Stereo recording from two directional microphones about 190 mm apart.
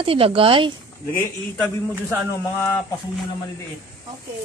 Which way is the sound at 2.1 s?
10° left (ahead or behind).